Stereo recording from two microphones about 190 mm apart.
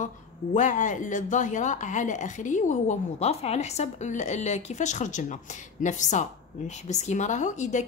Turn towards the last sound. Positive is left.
turn(degrees=40)  # may be behind; listen again after turning